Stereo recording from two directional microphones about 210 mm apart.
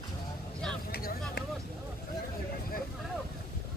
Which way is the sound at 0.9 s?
50° left (ahead or behind).